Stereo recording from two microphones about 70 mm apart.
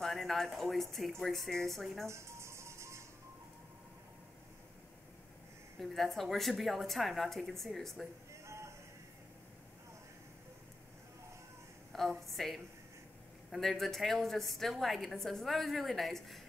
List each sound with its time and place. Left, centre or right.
0.0 s a woman's voice: centre
2.0 s music: right
5.8 s a woman's voice: centre
8.3 s male singing: right
11.9 s a woman's voice: centre